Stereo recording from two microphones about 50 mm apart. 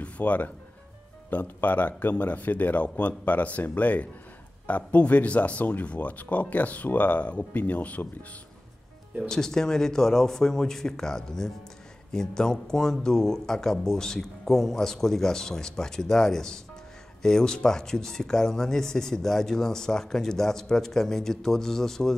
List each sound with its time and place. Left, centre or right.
0.0 s music: left
1.3 s speech: left
9.3 s speech: centre